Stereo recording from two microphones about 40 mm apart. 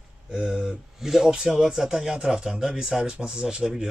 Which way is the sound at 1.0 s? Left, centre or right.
Centre.